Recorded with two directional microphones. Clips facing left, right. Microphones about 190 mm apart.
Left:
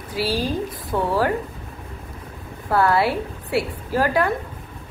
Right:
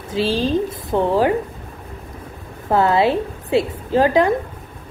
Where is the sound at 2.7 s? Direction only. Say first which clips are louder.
Right 3 dB; 20° right (ahead or behind).